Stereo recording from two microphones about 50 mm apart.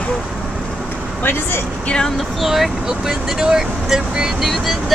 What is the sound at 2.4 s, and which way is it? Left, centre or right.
Speech, centre.